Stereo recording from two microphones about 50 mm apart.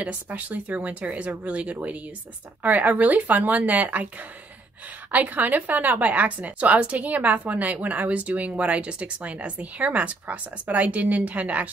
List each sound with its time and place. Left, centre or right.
0.0 s a woman's voice: right